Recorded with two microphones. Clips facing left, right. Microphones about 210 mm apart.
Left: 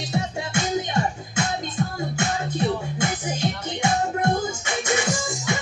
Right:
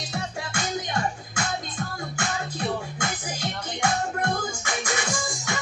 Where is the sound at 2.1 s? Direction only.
25° left (ahead or behind).